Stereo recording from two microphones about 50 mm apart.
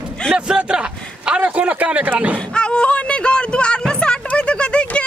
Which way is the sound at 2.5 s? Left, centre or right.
Centre.